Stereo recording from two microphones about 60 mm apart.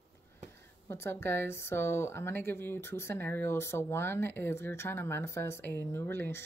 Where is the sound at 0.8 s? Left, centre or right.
Left.